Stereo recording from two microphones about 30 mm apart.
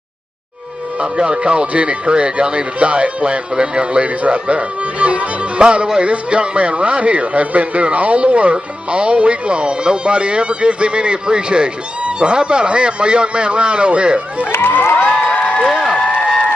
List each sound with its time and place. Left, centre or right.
0.9 s a man's voice: right
2.0 s a man's voice: right
5.6 s a man's voice: right
14.4 s speech: left
15.0 s speech: left